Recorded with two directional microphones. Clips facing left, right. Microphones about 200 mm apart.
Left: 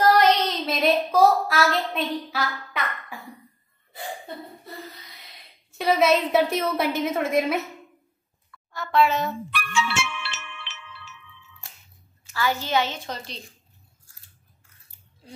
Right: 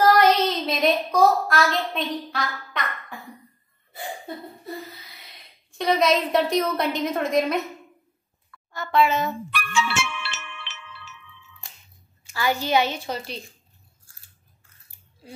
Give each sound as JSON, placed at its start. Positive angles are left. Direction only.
{"t": 0.5, "sound": "a sound", "side_deg": 0}
{"t": 5.2, "sound": "a woman's voice", "side_deg": 5}
{"t": 8.7, "sound": "a child's voice", "side_deg": 0}
{"t": 9.5, "sound": "music", "side_deg": -45}
{"t": 12.3, "sound": "a woman's voice", "side_deg": -15}